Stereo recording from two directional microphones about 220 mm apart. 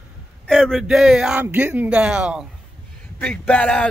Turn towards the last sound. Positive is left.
turn(degrees=5)  # may be behind; listen again after turning